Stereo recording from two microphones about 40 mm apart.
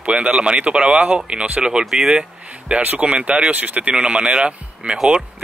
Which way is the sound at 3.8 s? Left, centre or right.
Right.